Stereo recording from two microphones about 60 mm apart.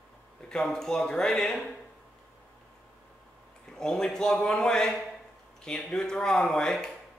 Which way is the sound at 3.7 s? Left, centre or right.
Centre.